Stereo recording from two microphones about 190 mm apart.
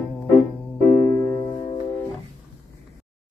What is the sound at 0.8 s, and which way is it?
Music, 20° left (ahead or behind).